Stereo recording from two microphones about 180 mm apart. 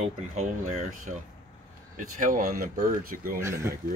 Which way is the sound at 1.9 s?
50° right (ahead or behind).